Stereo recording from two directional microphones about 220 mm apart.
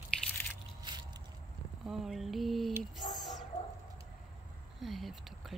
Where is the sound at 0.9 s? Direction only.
20° right (ahead or behind).